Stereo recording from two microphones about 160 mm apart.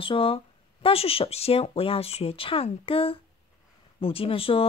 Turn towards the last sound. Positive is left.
turn(degrees=35)  # may be behind; listen again after turning